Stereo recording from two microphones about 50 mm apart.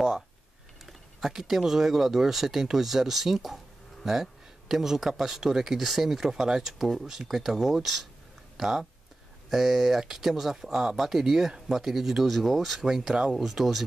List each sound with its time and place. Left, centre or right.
0.8 s speech: centre
13.1 s speech: centre
13.4 s speech: centre